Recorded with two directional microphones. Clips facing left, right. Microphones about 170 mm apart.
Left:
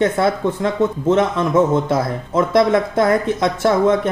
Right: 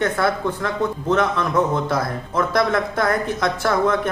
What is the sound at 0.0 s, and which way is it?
A man's voice, 25° left (ahead or behind).